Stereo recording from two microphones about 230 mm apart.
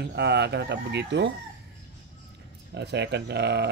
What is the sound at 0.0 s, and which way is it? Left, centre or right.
Speech, right.